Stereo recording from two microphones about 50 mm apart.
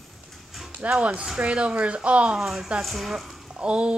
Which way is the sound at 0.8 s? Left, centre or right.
Right.